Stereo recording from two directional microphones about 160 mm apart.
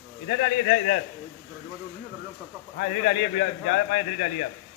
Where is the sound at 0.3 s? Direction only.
60° left (ahead or behind).